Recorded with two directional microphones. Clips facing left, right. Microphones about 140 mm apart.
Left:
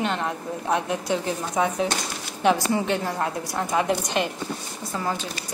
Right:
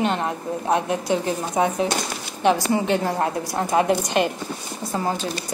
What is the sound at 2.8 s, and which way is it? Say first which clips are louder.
Speech: right 4 dB; 35° right (ahead or behind).